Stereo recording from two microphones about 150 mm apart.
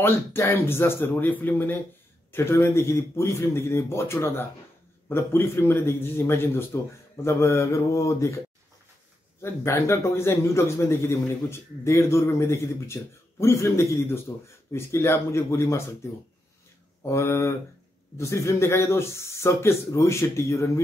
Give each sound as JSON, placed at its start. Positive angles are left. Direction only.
{"t": 0.0, "sound": "a man's voice", "side_deg": 15}
{"t": 9.4, "sound": "a man's voice", "side_deg": 20}
{"t": 17.0, "sound": "a man's voice", "side_deg": 15}